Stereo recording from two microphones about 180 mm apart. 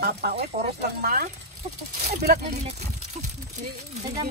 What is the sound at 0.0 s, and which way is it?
Speech, 60° right (ahead or behind).